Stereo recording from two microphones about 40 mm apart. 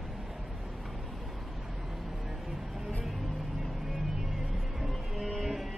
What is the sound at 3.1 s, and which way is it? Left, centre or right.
Music, centre.